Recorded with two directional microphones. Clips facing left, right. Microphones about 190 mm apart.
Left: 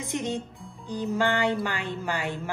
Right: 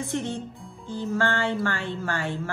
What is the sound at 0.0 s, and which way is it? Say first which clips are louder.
Speech: right 1 dB; 15° left (ahead or behind).